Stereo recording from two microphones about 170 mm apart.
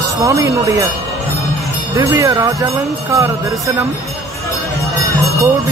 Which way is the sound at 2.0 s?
20° right (ahead or behind).